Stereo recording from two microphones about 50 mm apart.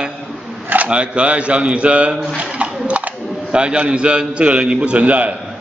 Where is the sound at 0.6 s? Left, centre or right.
Right.